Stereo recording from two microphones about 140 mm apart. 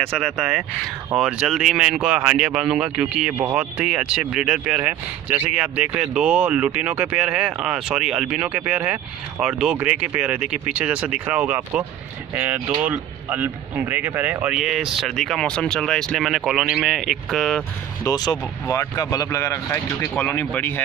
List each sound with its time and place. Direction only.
0.2 s speech: 5° right (ahead or behind)
3.3 s speech: 15° right (ahead or behind); by 17.6 s 5° left (ahead or behind)
18.0 s speech: 30° left (ahead or behind); by 20.8 s 10° left (ahead or behind)